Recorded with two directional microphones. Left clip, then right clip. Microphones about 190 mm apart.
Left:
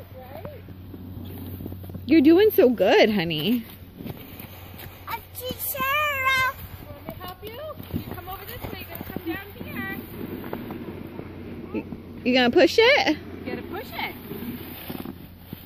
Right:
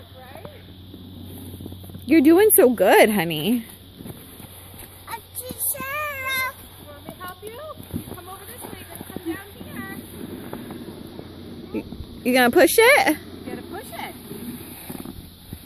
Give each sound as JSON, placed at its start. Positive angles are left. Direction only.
{"t": 2.0, "sound": "speech", "side_deg": -10}
{"t": 5.0, "sound": "child singing", "side_deg": -5}
{"t": 9.7, "sound": "vehicle", "side_deg": -45}
{"t": 12.3, "sound": "speech", "side_deg": -10}
{"t": 13.3, "sound": "vehicle", "side_deg": -40}